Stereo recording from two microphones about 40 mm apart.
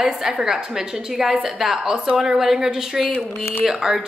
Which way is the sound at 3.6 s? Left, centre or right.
Centre.